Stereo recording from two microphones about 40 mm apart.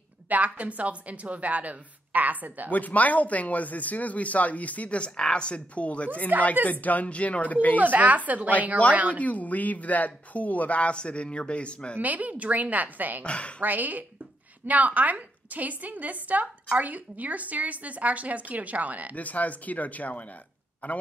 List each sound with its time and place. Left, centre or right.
0.3 s a woman's voice: right
2.7 s a woman's voice: left
7.8 s a woman's voice: right
9.2 s speech: left
12.0 s a woman's voice: right
13.2 s speech: left
13.6 s a woman's voice: right
19.1 s speech: left